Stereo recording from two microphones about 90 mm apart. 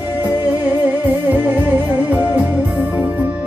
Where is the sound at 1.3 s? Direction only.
20° right (ahead or behind).